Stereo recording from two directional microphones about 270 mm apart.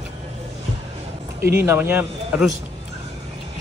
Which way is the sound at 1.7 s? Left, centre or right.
Centre.